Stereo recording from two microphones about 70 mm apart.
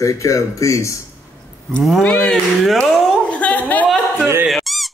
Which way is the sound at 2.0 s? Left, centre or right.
Centre.